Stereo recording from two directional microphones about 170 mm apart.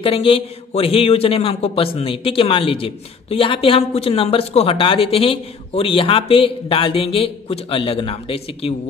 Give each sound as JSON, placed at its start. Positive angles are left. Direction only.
{"t": 0.0, "sound": "a woman's voice", "side_deg": 30}